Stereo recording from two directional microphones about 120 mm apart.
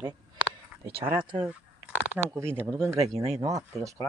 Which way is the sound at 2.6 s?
20° right (ahead or behind).